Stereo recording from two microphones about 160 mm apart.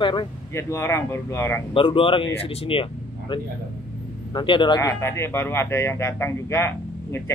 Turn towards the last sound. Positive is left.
turn(degrees=15)  # may be behind; listen again after turning